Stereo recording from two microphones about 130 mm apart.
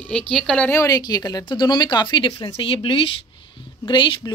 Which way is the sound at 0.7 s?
25° left (ahead or behind).